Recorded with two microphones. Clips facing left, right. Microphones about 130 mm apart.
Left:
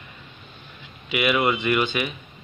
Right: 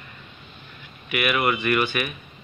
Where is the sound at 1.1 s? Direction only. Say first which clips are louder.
Left 1 dB; 20° left (ahead or behind).